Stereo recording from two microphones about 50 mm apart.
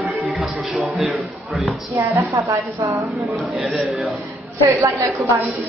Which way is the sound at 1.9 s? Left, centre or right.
Right.